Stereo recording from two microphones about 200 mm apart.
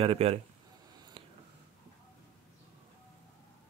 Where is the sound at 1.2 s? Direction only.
30° right (ahead or behind).